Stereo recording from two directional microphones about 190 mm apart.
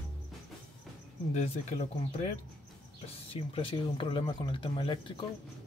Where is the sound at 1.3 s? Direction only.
35° left (ahead or behind).